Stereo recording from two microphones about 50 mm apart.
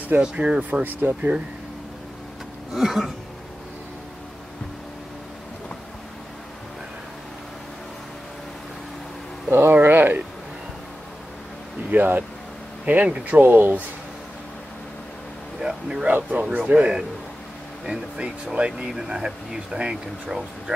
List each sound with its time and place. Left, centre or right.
0.2 s speech: centre
0.6 s speech: right
2.7 s a sound: centre
9.5 s speech: right
11.9 s speech: right
15.6 s a sound: centre
16.1 s speech: right
18.1 s speech: right